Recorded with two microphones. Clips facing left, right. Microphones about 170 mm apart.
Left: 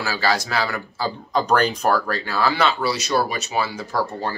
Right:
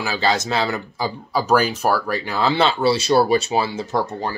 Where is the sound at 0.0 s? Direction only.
20° right (ahead or behind).